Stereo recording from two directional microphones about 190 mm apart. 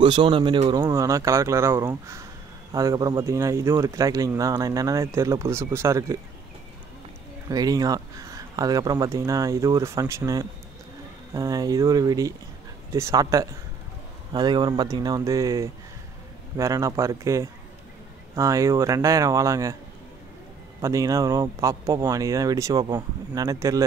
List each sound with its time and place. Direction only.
0.0 s speech: 25° right (ahead or behind)
7.4 s speech: 20° right (ahead or behind)
20.8 s speech: 15° right (ahead or behind)